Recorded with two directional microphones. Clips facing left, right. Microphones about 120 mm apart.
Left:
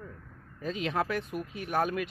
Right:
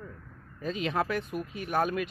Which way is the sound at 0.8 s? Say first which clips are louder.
Right 1 dB; 20° right (ahead or behind).